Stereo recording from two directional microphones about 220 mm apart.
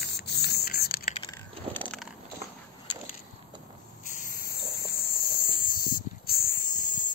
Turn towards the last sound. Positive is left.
turn(degrees=40)  # may be behind; listen again after turning